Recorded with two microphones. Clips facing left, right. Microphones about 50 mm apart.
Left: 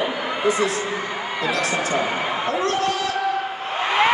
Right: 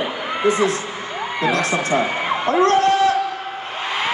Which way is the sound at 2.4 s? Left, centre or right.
Right.